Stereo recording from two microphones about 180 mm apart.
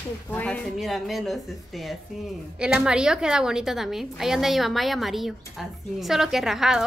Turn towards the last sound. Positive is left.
turn(degrees=0)  # may be behind; listen again after turning